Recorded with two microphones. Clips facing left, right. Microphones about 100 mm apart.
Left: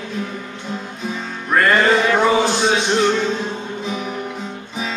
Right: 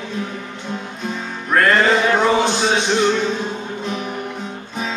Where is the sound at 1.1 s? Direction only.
Centre (ahead or behind).